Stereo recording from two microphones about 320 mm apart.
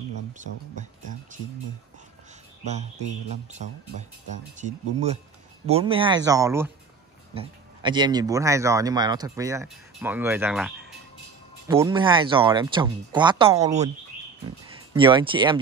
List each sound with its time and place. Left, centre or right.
4.6 s speech: right
15.0 s speech: centre